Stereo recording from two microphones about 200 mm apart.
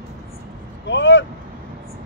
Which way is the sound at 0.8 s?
65° left (ahead or behind).